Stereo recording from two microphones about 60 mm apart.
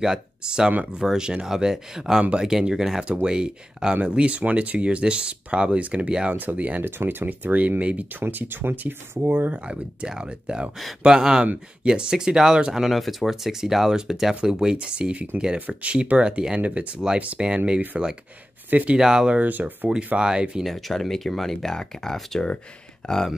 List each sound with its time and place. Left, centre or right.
0.0 s speech: centre
6.8 s speech: right
8.2 s speech: right
9.7 s speech: centre
11.4 s speech: right
11.9 s speech: centre
18.7 s speech: right
18.9 s speech: centre
19.4 s speech: right
20.2 s speech: centre
20.6 s speech: centre